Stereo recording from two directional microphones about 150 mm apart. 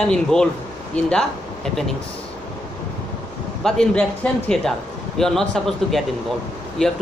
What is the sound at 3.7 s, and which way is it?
Speech, 5° left (ahead or behind).